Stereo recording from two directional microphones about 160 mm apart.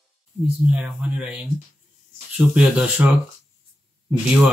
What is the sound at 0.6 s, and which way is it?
Speech, 5° right (ahead or behind).